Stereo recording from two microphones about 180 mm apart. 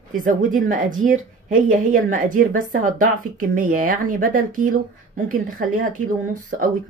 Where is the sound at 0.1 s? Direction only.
50° right (ahead or behind).